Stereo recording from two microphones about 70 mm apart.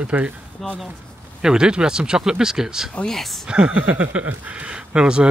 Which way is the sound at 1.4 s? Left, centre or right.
Centre.